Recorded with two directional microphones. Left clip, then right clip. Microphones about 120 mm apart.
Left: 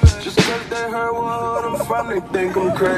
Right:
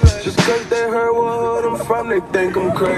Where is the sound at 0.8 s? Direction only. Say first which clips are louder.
Right 2 dB; 65° right (ahead or behind).